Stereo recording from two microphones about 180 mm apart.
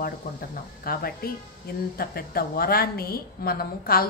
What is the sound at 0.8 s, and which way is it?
A woman's voice, 55° left (ahead or behind).